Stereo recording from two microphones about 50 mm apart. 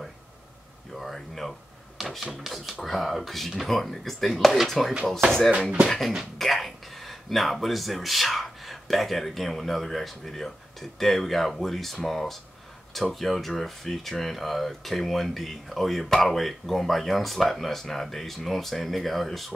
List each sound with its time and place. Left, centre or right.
0.9 s a sound: centre
2.0 s rub: centre
2.4 s speech: centre
5.5 s speech: centre
5.9 s speech: centre